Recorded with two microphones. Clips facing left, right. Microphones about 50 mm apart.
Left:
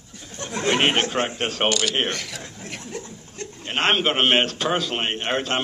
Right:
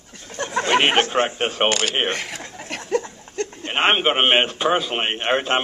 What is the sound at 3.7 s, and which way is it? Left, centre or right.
A man's voice, centre.